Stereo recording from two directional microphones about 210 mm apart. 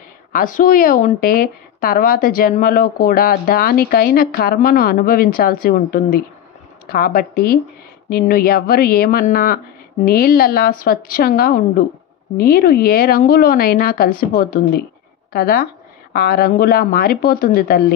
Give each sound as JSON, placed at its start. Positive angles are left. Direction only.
{"t": 0.3, "sound": "a woman's voice", "side_deg": 40}